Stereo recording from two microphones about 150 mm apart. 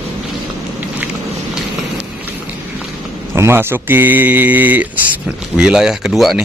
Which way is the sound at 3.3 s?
15° right (ahead or behind).